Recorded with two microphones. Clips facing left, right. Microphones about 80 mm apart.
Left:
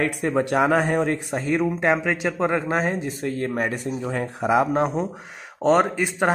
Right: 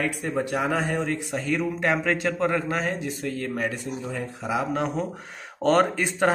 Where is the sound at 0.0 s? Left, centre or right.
Left.